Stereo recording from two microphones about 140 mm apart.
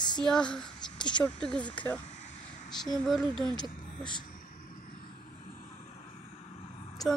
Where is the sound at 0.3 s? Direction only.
5° left (ahead or behind).